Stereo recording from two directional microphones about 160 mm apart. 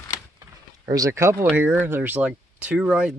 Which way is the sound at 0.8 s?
20° right (ahead or behind).